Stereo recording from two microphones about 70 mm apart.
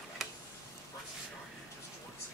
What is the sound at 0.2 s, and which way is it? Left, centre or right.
Tick-tock, centre.